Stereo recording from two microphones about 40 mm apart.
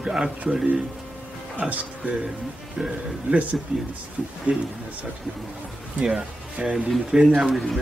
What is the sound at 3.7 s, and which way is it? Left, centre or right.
Speech, right.